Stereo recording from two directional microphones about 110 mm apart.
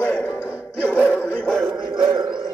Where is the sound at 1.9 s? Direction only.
45° right (ahead or behind).